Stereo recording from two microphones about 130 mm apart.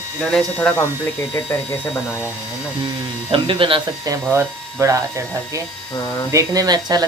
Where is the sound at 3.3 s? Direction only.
40° right (ahead or behind).